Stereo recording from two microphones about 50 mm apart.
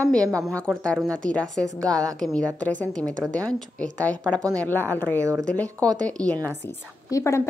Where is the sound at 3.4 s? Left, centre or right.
Left.